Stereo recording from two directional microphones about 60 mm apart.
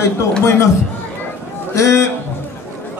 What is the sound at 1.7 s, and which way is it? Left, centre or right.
Speech, left.